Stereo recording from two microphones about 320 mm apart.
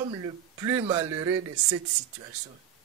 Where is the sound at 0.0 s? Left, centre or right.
Centre.